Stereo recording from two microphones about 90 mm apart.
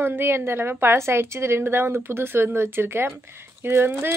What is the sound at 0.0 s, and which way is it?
A woman's voice, 25° right (ahead or behind).